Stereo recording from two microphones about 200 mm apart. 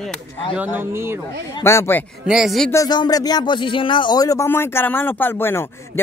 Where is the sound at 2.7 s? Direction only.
20° left (ahead or behind).